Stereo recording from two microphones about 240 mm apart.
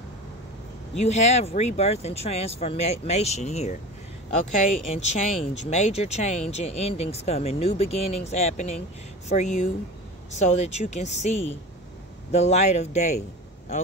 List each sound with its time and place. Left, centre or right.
1.0 s speech: left